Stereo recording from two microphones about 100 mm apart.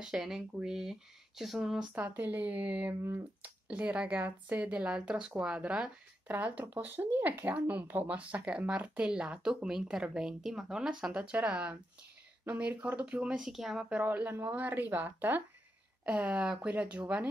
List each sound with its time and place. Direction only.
0.0 s speech: 5° right (ahead or behind)
2.0 s speech: 20° right (ahead or behind)
2.9 s speech: 25° right (ahead or behind)
3.4 s speech: 15° right (ahead or behind)